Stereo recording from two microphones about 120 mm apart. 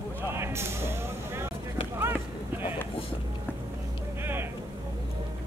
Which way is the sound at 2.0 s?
15° right (ahead or behind).